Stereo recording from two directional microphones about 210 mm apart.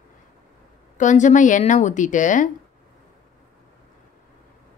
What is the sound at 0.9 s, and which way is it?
A woman's voice, 35° left (ahead or behind).